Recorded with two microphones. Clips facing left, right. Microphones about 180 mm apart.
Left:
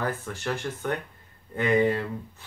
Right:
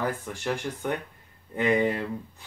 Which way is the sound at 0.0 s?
10° right (ahead or behind).